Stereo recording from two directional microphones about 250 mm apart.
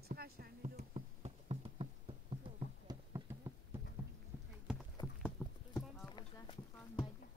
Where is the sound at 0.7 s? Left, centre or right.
Right.